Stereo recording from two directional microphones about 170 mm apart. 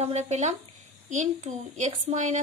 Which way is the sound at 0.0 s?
40° right (ahead or behind).